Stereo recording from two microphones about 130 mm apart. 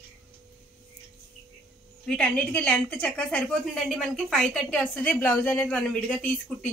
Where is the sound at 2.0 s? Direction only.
5° left (ahead or behind).